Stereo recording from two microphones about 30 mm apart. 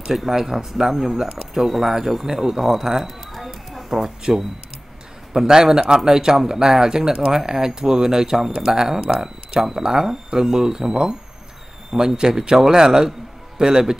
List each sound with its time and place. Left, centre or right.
0.1 s speech: centre
2.6 s a sound: centre
5.3 s speech: centre